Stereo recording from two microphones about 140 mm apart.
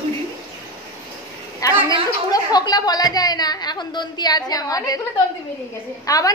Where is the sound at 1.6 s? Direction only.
25° left (ahead or behind).